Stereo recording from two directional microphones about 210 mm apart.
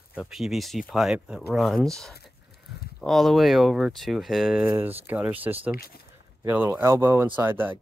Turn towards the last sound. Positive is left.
turn(degrees=-10)  # may be behind; listen again after turning